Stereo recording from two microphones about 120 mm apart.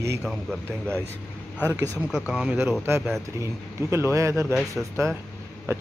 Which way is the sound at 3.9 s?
25° right (ahead or behind).